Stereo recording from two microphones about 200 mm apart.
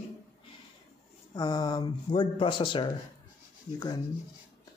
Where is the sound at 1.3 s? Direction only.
20° left (ahead or behind).